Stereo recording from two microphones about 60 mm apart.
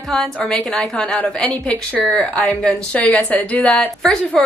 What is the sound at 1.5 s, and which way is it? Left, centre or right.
A woman's voice, left.